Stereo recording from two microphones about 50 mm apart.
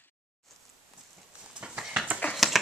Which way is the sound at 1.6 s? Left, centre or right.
Centre.